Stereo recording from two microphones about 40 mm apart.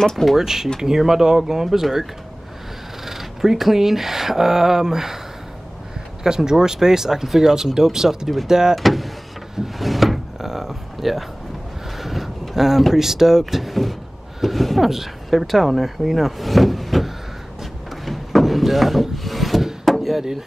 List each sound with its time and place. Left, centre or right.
0.0 s speech: centre
0.4 s speech: centre
3.1 s speech: centre
6.2 s speech: centre
8.7 s speech: centre
9.8 s door: centre
12.0 s vehicle: centre
12.8 s speech: centre
18.0 s wood: centre